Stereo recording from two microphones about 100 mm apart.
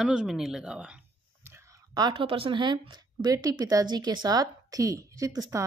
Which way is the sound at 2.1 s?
65° right (ahead or behind).